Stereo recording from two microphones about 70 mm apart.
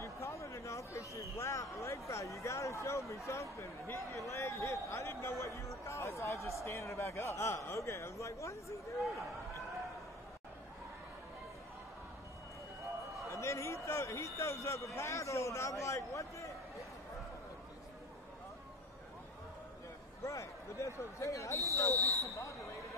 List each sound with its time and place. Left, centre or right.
0.0 s a sound: left
3.3 s a man's voice: left
13.3 s a man's voice: left
20.2 s a man's voice: left